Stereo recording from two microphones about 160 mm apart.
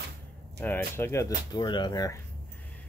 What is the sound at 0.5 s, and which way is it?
Speech, 10° left (ahead or behind).